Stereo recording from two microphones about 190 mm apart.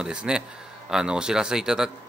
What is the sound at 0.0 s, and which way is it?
A man's voice, 5° right (ahead or behind).